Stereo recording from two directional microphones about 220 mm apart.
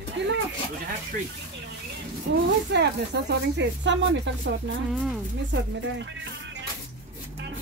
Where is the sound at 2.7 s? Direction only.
50° right (ahead or behind).